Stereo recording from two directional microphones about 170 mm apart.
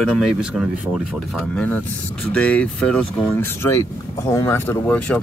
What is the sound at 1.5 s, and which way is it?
Speech, 10° left (ahead or behind).